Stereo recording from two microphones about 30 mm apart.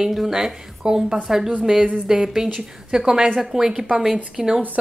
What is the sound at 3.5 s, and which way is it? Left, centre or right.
Speech, centre.